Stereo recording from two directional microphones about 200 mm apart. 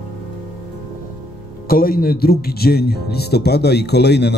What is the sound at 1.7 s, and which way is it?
Speech, 45° left (ahead or behind).